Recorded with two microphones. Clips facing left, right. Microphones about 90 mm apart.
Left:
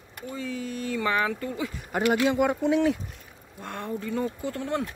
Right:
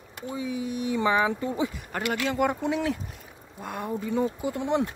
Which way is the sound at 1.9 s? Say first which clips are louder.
Left 9 dB; 20° left (ahead or behind).